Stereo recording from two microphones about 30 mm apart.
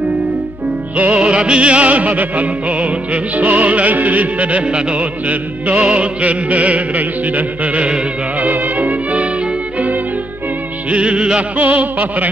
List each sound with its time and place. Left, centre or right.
0.9 s music: right
1.2 s music: right
10.9 s music: right
11.5 s music: right